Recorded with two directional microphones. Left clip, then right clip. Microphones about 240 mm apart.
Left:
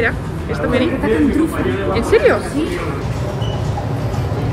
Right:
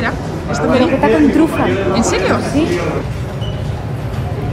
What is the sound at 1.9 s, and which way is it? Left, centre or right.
Speech, centre.